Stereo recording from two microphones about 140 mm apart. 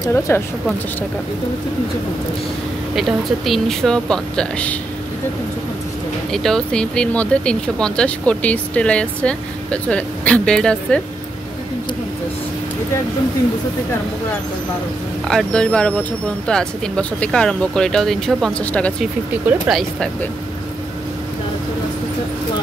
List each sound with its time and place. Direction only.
0.0 s speech: 15° left (ahead or behind)
3.0 s speech: centre (ahead or behind)
6.3 s speech: 5° left (ahead or behind)
15.2 s speech: 5° left (ahead or behind)
19.5 s speech: 15° right (ahead or behind)